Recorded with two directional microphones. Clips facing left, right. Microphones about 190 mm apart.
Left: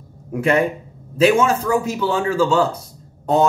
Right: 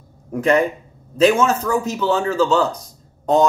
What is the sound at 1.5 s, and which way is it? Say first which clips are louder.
Speech: left 1 dB; 10° left (ahead or behind).